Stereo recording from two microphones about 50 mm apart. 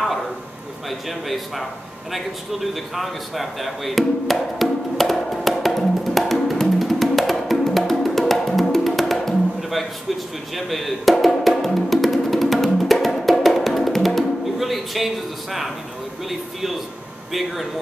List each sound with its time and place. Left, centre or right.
0.8 s speech: centre
2.1 s a sound: centre
10.5 s music: centre
17.3 s speech: centre